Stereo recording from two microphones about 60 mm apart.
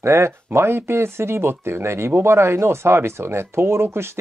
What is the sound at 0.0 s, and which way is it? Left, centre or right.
Speech, right.